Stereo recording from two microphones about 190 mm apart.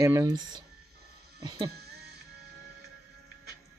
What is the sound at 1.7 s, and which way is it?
Music, 55° right (ahead or behind).